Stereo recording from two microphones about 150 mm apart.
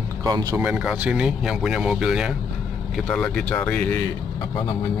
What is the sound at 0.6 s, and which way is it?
Speech, 10° right (ahead or behind).